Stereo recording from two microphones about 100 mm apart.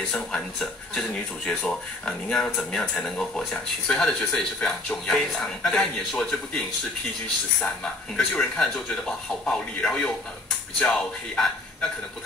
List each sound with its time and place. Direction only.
0.1 s speech: 5° left (ahead or behind)
7.6 s speech: 10° left (ahead or behind)